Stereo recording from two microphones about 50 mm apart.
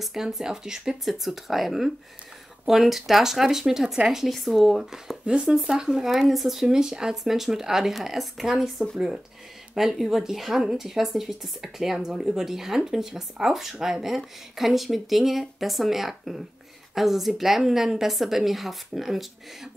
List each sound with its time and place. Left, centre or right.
0.0 s speech: centre
5.2 s speech: centre